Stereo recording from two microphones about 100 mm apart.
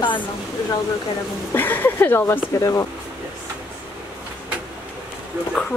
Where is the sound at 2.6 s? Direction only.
30° left (ahead or behind).